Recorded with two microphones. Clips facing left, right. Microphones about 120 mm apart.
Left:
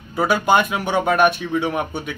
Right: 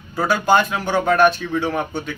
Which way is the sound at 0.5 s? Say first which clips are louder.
Right 3 dB; 15° left (ahead or behind).